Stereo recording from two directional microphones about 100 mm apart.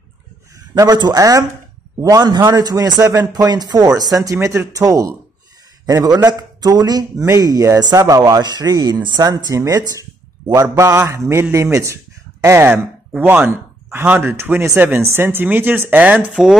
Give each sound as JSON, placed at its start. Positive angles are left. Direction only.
{"t": 0.7, "sound": "a man's voice", "side_deg": -40}